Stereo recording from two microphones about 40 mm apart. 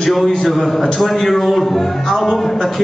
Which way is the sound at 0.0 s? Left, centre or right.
Centre.